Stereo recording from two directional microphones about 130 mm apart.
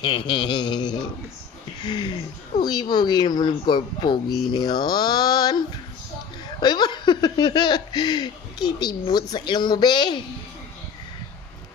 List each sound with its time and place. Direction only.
0.0 s speech: 35° left (ahead or behind)
6.6 s speech: 35° left (ahead or behind)